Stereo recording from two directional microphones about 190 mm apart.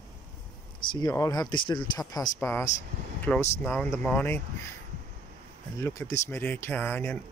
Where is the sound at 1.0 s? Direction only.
20° left (ahead or behind).